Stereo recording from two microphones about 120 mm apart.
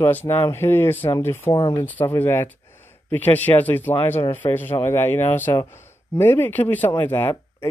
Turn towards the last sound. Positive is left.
turn(degrees=20)  # may be behind; listen again after turning